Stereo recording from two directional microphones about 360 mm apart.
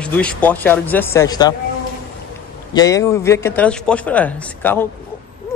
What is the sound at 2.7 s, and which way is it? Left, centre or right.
A man's voice, centre.